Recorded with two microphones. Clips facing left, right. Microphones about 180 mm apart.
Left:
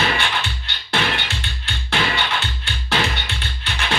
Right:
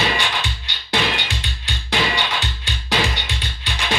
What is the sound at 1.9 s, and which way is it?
Music, 15° right (ahead or behind).